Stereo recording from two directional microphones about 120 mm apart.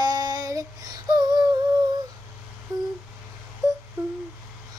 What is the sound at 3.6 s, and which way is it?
Wail, 25° right (ahead or behind).